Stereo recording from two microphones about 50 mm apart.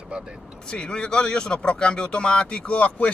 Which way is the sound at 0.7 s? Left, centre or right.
Centre.